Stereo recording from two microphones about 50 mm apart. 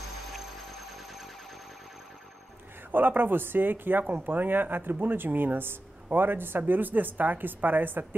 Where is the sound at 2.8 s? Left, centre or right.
Right.